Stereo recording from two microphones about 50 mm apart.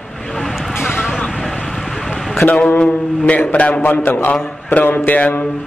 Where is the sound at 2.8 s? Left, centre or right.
Left.